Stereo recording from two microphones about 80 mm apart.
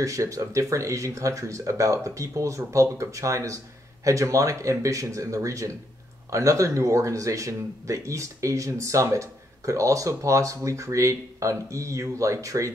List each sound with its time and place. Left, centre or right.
0.0 s speech: right